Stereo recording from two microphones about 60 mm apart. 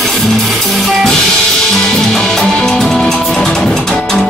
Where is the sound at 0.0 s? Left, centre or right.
Centre.